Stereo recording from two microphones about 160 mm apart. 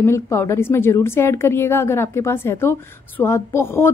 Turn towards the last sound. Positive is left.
turn(degrees=15)  # may be behind; listen again after turning